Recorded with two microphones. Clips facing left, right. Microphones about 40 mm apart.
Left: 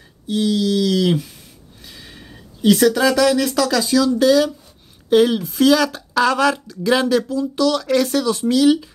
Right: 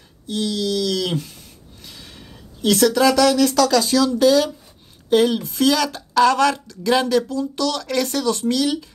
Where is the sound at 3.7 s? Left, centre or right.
Centre.